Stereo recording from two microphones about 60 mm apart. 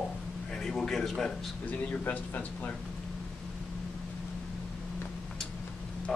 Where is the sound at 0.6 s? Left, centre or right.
Centre.